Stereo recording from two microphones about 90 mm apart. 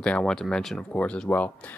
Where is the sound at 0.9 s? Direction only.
15° left (ahead or behind).